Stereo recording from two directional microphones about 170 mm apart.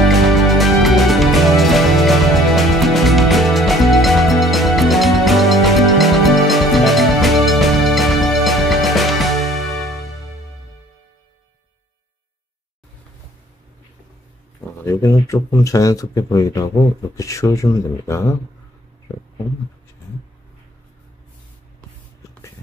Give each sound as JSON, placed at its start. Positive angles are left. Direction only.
{"t": 0.0, "sound": "music", "side_deg": 0}
{"t": 14.9, "sound": "speech", "side_deg": 15}